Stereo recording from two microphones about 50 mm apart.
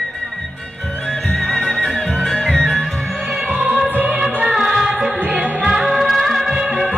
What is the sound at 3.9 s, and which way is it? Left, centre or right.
Music, right.